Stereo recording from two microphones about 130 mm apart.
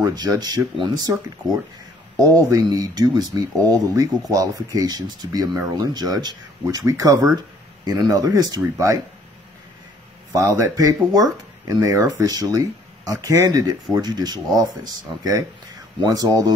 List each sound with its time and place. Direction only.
0.0 s speech: 30° right (ahead or behind)
2.1 s speech: 30° right (ahead or behind)
10.3 s speech: 25° right (ahead or behind)